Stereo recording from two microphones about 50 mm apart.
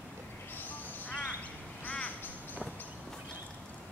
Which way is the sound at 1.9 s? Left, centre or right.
Left.